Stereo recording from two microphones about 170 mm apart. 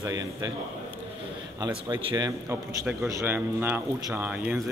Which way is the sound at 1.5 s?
25° right (ahead or behind).